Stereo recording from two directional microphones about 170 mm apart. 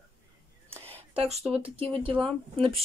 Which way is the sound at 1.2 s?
40° right (ahead or behind).